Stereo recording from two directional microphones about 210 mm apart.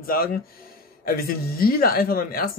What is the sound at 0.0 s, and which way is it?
Speech, 45° left (ahead or behind).